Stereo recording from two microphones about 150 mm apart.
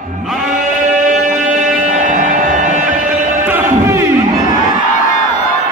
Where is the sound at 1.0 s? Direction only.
60° right (ahead or behind).